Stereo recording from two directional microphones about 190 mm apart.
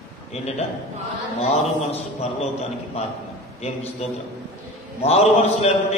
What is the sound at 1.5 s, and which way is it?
Speech, 35° left (ahead or behind).